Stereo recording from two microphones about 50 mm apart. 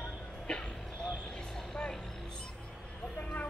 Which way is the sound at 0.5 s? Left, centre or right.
Centre.